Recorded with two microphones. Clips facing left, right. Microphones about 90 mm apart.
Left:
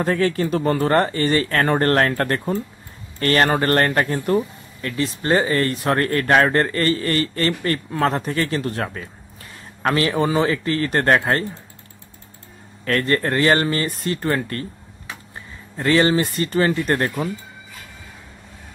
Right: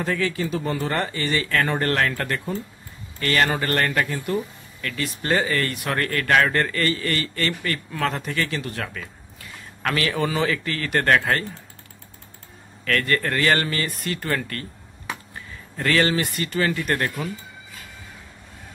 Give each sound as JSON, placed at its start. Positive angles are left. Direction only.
{"t": 0.0, "sound": "speech", "side_deg": 40}
{"t": 4.8, "sound": "speech", "side_deg": 30}
{"t": 12.8, "sound": "speech", "side_deg": 30}